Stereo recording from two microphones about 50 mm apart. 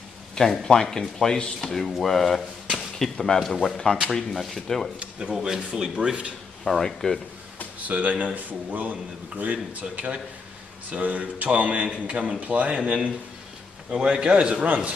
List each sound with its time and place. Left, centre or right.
0.4 s speech: centre
5.3 s speech: centre
6.6 s speech: centre
7.9 s a man's voice: right